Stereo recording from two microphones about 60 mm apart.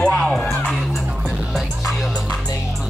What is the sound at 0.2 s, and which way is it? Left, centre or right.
Music, centre.